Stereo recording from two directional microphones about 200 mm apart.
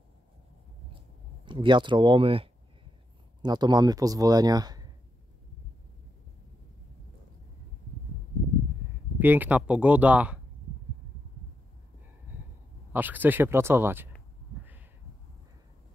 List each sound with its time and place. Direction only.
1.4 s speech: 25° right (ahead or behind)
9.2 s speech: 10° right (ahead or behind)
12.9 s speech: 10° right (ahead or behind)